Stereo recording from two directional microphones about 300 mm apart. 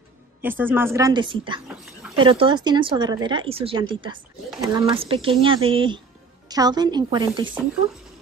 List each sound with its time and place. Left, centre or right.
0.4 s speech: centre